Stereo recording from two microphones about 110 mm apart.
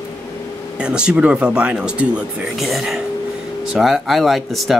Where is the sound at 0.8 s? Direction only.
10° right (ahead or behind).